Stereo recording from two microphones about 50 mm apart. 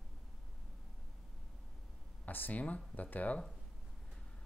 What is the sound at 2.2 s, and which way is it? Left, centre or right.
Speech, left.